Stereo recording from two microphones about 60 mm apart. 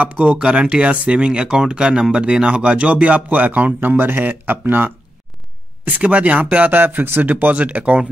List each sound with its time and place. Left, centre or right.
0.0 s speech: right